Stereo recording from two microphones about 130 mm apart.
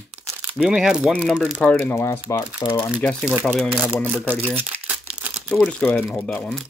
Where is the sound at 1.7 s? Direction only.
20° left (ahead or behind).